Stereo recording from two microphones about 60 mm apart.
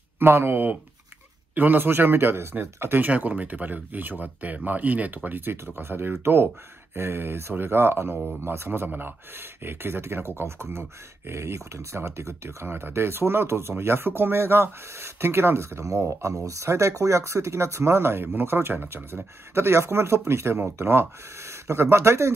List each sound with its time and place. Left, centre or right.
0.2 s speech: right
3.1 s speech: right